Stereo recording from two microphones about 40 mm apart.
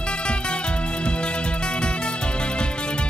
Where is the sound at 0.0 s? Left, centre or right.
Left.